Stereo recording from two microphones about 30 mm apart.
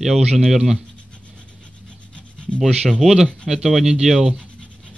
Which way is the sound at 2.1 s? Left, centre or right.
Left.